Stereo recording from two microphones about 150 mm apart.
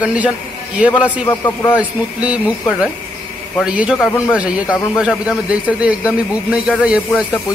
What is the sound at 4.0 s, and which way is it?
Speech, 20° left (ahead or behind).